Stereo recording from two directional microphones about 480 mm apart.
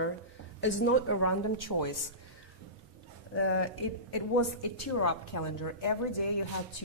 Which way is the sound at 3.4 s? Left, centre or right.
Left.